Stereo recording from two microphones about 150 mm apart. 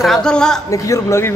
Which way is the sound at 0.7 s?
20° left (ahead or behind).